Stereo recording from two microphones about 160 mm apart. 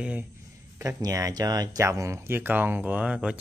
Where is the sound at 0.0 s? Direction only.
10° right (ahead or behind).